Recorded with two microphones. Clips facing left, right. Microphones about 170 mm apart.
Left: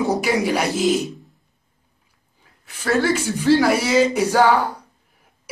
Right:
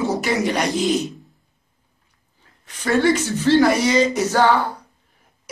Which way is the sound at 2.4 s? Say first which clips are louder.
Right 2 dB; 5° left (ahead or behind).